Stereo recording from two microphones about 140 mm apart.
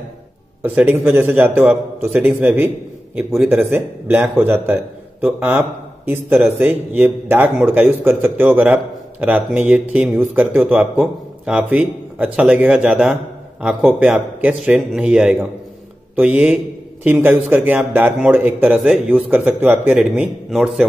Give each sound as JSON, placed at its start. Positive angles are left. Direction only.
{"t": 0.6, "sound": "a man's voice", "side_deg": -15}